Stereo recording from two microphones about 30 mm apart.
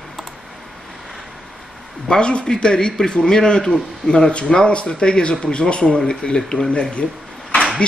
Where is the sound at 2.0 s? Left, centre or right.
Left.